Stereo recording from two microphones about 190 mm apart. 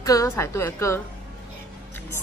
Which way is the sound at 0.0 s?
15° left (ahead or behind).